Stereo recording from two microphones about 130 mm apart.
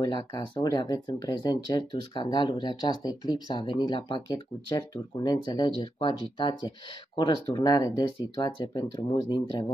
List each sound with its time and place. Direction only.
0.0 s speech: 30° left (ahead or behind)